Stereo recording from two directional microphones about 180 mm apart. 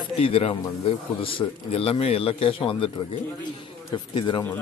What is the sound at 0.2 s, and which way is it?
A man's voice, 35° left (ahead or behind).